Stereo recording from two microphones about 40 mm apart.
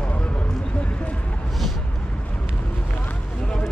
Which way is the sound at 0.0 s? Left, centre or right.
Left.